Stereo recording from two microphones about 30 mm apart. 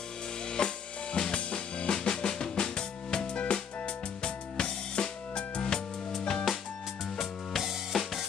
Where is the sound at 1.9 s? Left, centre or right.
Left.